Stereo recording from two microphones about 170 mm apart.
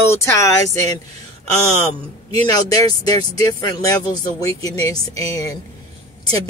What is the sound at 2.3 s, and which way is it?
Speech, 25° left (ahead or behind).